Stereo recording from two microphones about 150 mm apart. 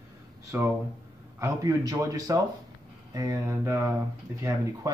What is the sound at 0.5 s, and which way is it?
Speech, 15° right (ahead or behind).